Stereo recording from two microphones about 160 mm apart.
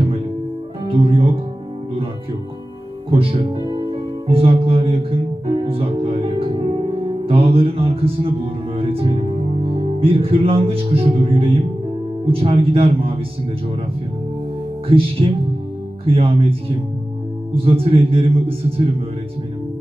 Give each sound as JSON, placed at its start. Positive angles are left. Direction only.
{"t": 0.8, "sound": "speech", "side_deg": -35}
{"t": 3.1, "sound": "music", "side_deg": -35}
{"t": 12.3, "sound": "speech", "side_deg": -35}
{"t": 14.9, "sound": "speech", "side_deg": -35}